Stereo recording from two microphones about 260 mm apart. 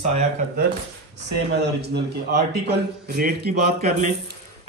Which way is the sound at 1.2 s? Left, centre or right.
Right.